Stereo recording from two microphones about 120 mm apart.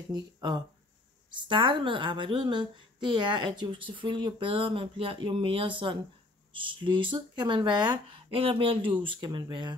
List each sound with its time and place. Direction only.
0.1 s a woman's voice: 40° right (ahead or behind)